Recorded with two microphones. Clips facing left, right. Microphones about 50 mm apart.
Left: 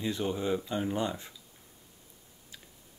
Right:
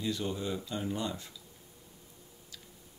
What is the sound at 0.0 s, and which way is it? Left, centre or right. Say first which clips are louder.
Speech: left 3 dB; left.